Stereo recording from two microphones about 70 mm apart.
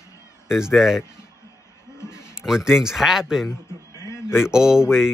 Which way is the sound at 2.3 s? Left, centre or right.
Centre.